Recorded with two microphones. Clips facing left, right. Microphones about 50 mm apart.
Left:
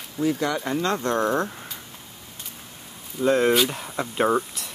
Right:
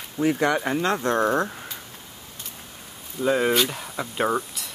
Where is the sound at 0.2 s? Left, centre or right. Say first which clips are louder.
Right 2 dB; right.